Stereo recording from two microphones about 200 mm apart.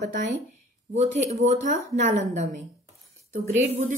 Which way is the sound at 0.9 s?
35° right (ahead or behind).